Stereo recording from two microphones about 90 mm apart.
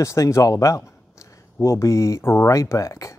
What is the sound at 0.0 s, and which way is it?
Speech, 35° left (ahead or behind).